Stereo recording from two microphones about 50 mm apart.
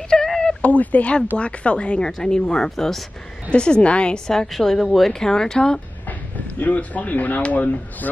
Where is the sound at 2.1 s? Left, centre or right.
Centre.